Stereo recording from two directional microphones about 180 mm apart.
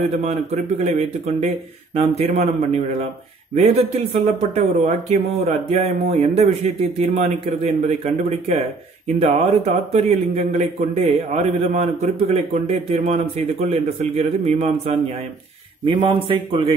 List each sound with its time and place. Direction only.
0.2 s a man's voice: 40° right (ahead or behind)